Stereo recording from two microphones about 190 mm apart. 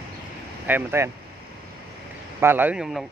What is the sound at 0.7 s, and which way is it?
Speech, 10° right (ahead or behind).